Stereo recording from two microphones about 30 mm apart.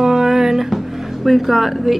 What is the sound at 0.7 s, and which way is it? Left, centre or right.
Speech, centre.